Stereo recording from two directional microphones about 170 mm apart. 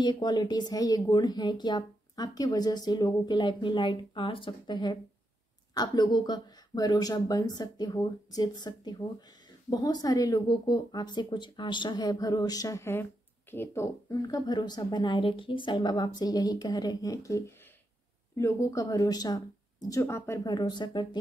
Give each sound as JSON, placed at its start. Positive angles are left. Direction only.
{"t": 0.0, "sound": "speech", "side_deg": 25}